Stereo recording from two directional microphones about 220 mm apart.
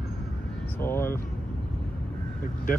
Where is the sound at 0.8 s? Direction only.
10° left (ahead or behind).